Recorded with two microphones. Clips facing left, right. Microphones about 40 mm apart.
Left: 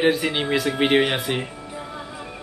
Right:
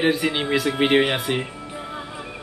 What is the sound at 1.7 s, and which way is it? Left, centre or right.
Music, centre.